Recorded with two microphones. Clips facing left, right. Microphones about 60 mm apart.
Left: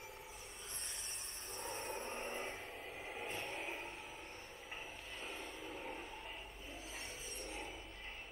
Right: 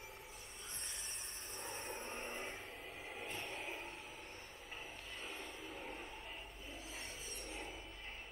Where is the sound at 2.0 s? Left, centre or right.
Left.